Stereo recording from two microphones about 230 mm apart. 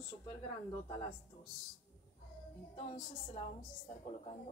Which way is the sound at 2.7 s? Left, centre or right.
Left.